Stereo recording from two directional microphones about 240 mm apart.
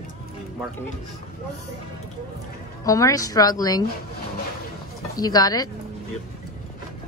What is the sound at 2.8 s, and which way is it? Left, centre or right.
A woman's voice, centre.